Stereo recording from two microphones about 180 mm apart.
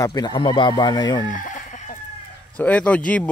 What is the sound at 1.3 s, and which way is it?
Chicken, 45° left (ahead or behind).